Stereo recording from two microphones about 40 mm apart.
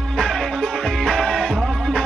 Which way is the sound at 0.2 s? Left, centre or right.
Centre.